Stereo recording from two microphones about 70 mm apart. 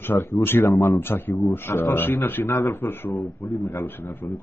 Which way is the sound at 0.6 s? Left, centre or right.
Left.